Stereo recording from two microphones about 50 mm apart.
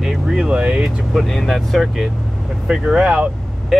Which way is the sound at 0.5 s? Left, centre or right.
Centre.